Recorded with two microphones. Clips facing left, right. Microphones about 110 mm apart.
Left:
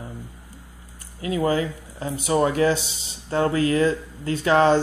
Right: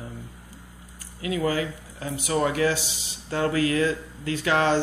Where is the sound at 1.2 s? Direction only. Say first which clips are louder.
Left 3 dB; 30° left (ahead or behind).